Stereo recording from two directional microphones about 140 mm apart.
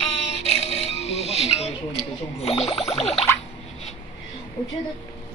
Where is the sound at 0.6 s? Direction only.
50° left (ahead or behind).